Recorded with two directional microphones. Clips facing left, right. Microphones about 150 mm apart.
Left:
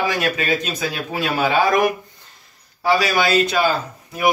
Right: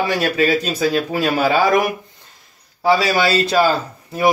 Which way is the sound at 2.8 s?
30° right (ahead or behind).